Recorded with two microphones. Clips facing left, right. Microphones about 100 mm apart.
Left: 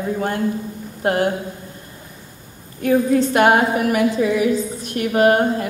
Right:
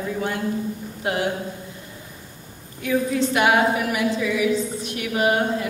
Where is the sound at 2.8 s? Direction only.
45° left (ahead or behind).